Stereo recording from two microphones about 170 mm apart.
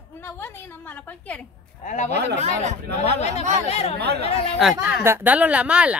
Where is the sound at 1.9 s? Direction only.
45° left (ahead or behind).